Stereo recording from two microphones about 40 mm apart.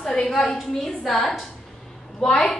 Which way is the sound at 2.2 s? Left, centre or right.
Centre.